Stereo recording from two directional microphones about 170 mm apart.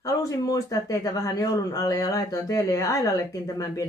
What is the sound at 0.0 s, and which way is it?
A man's voice, 20° left (ahead or behind).